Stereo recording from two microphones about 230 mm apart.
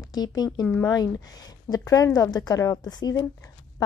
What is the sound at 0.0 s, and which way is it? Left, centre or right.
A woman's voice, centre.